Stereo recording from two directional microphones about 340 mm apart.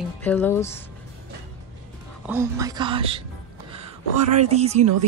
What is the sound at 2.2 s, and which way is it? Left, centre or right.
A woman's voice, centre.